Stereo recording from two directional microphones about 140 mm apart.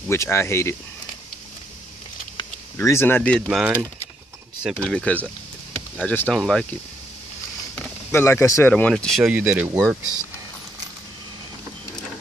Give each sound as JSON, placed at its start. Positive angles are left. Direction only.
{"t": 0.1, "sound": "speech", "side_deg": 20}
{"t": 2.8, "sound": "speech", "side_deg": 20}
{"t": 3.4, "sound": "speech", "side_deg": -5}
{"t": 4.8, "sound": "speech", "side_deg": 5}
{"t": 8.1, "sound": "speech", "side_deg": 15}
{"t": 8.7, "sound": "speech", "side_deg": 5}
{"t": 9.3, "sound": "speech", "side_deg": -10}